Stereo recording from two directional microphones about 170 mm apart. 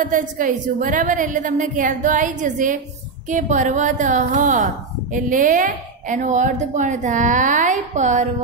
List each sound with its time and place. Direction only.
0.0 s speech: 50° right (ahead or behind)